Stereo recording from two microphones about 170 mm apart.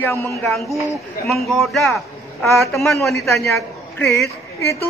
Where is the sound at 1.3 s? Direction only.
Centre (ahead or behind).